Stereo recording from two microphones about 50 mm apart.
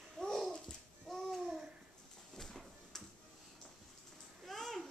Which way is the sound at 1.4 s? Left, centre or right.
Centre.